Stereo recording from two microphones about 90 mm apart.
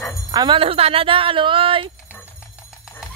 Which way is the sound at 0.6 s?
90° right.